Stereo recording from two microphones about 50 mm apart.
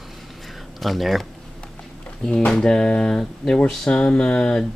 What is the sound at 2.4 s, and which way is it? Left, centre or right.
Speech, centre.